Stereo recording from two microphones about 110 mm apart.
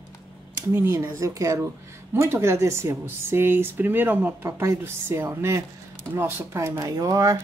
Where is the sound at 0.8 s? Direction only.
25° right (ahead or behind).